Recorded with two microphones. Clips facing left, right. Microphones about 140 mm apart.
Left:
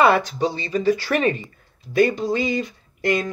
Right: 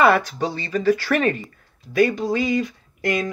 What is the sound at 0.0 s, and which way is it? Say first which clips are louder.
Speech: even; 20° left (ahead or behind).